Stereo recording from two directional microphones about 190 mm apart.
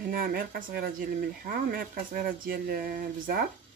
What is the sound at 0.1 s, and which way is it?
Speech, 50° right (ahead or behind).